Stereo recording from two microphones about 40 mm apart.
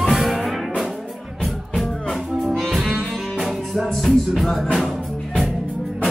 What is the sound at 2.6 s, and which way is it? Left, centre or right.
Music, centre.